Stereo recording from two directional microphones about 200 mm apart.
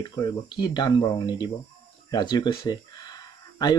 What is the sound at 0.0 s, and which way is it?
Speech, 20° left (ahead or behind).